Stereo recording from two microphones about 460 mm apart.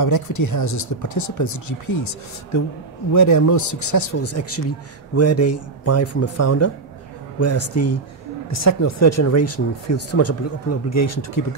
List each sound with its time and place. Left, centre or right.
0.0 s speech: left
3.1 s speech: left